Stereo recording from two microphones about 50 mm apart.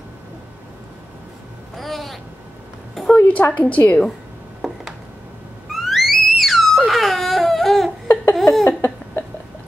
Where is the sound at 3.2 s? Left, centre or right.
Left.